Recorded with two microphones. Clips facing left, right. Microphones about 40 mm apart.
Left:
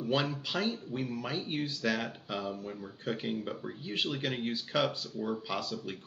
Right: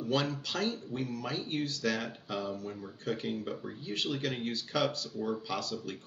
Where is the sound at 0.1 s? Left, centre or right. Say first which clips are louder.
Even; centre.